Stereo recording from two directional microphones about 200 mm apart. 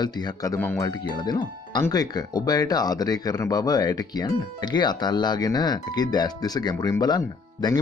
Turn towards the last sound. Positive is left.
turn(degrees=20)  # may be behind; listen again after turning